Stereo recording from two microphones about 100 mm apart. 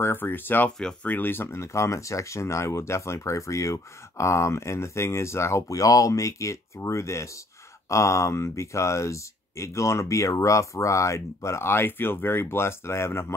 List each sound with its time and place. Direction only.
0.0 s speech: 20° left (ahead or behind)
0.7 s speech: 5° left (ahead or behind)
1.1 s speech: 20° left (ahead or behind)